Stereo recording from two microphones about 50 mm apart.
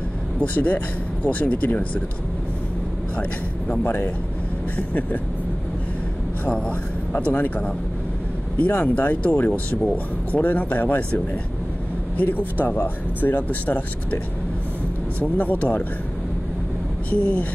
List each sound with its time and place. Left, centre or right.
0.4 s speech: left
3.2 s speech: left
3.8 s speech: left
4.7 s speech: left
7.3 s speech: left
12.5 s speech: left
15.1 s speech: left
17.1 s speech: left